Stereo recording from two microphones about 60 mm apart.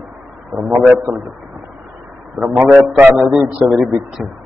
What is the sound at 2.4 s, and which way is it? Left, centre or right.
Speech, centre.